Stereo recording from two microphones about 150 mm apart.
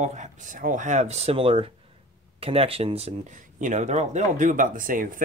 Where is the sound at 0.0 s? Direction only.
55° right (ahead or behind).